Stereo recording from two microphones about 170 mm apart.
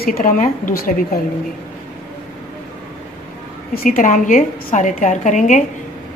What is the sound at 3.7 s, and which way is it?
A woman's voice, 50° left (ahead or behind).